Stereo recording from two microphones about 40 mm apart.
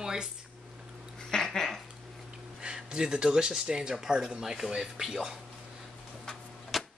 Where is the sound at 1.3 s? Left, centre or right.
Centre.